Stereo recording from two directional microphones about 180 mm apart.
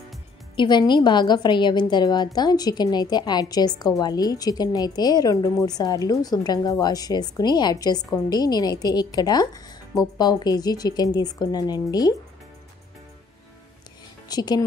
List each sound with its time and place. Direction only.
0.6 s a woman's voice: 25° left (ahead or behind)
14.3 s a woman's voice: 25° left (ahead or behind)